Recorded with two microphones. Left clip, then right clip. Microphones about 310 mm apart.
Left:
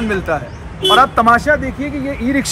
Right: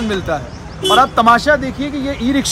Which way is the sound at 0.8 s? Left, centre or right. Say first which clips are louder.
Even; centre.